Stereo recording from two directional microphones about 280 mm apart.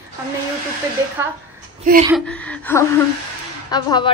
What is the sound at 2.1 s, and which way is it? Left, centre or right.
A woman's voice, centre.